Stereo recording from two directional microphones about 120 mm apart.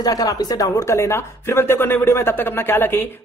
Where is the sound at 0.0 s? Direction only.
30° left (ahead or behind).